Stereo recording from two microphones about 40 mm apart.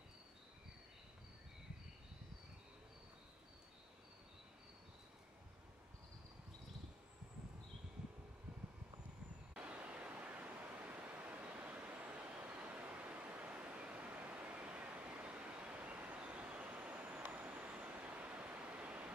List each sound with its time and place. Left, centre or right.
9.6 s waves: right
11.7 s vehicle: right
12.2 s a sound: right
16.8 s vehicle: right